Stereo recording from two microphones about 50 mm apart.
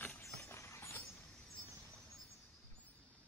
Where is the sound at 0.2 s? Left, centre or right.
Left.